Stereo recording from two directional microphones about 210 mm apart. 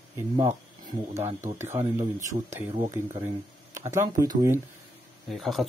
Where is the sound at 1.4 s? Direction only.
10° right (ahead or behind).